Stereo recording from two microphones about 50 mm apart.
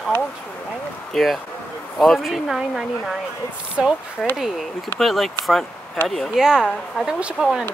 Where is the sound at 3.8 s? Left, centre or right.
Right.